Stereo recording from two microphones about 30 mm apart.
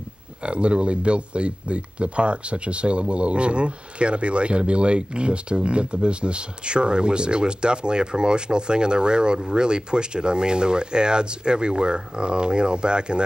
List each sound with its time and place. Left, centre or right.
0.4 s speech: right